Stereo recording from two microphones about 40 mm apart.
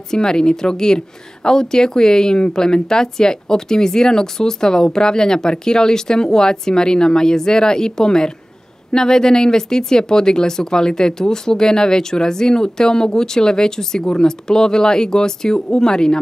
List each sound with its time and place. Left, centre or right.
0.1 s a woman's voice: centre